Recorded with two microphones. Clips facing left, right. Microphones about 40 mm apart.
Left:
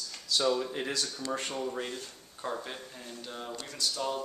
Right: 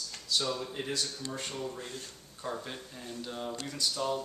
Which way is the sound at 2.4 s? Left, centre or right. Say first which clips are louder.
Left 2 dB; centre.